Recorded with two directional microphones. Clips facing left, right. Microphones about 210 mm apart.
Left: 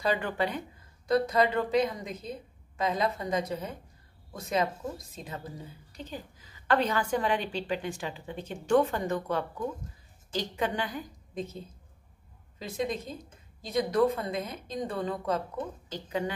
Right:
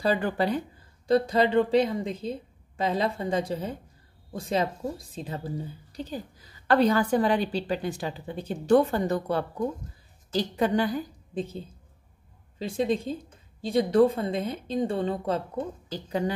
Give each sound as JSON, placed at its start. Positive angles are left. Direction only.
{"t": 0.0, "sound": "a woman's voice", "side_deg": -35}